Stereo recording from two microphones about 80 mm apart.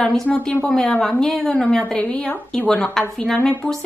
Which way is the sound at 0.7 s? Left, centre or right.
Centre.